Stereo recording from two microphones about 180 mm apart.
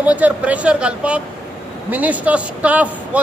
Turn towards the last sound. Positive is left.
turn(degrees=-10)  # may be behind; listen again after turning